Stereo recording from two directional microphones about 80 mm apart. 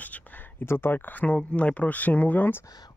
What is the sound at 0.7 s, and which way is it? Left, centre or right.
Speech, left.